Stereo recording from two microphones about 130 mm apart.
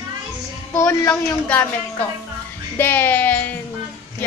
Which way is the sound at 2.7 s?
15° left (ahead or behind).